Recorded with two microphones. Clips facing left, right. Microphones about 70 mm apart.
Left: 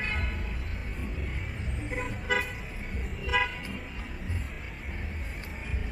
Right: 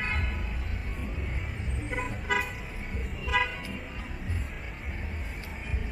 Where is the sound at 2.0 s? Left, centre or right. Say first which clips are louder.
Even; centre.